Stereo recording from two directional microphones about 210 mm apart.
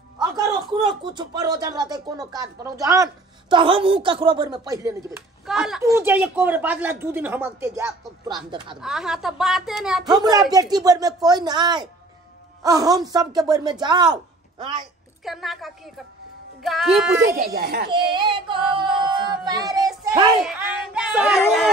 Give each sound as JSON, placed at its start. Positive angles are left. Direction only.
{"t": 0.2, "sound": "speech", "side_deg": -20}
{"t": 5.5, "sound": "speech", "side_deg": 0}
{"t": 8.8, "sound": "a woman's voice", "side_deg": 0}
{"t": 10.5, "sound": "speech", "side_deg": -15}
{"t": 15.2, "sound": "a woman's voice", "side_deg": 0}
{"t": 17.3, "sound": "a child's voice", "side_deg": -45}
{"t": 17.9, "sound": "speech", "side_deg": -20}
{"t": 20.4, "sound": "a woman's voice", "side_deg": -5}